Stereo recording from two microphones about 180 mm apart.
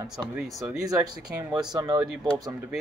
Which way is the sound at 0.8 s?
20° right (ahead or behind).